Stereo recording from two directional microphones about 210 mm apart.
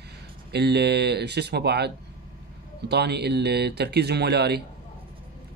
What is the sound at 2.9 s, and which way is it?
Speech, 50° right (ahead or behind).